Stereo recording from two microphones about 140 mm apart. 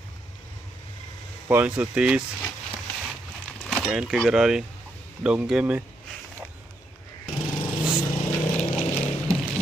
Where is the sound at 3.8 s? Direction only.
5° right (ahead or behind).